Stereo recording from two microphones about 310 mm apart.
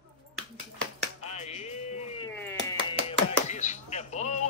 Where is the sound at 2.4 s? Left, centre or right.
Centre.